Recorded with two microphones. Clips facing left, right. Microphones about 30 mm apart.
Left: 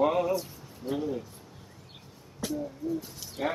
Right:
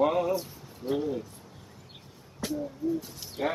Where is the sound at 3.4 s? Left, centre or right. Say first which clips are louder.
Right 1 dB; centre.